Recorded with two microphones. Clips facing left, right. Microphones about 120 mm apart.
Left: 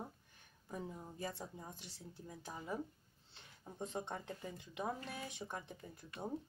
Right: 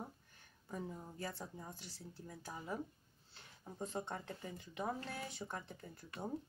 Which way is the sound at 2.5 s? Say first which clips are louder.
Left 1 dB; centre (ahead or behind).